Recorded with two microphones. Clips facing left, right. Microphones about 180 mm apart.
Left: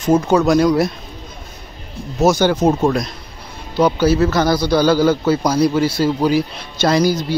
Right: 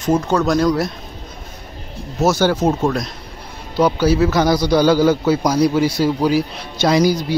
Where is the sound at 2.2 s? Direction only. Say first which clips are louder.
Left 2 dB; 5° right (ahead or behind).